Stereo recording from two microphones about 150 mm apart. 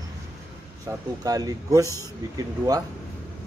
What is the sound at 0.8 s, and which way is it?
Speech, 25° right (ahead or behind).